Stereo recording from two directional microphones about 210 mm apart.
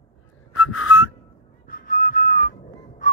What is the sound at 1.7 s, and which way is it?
Whistling, 40° left (ahead or behind).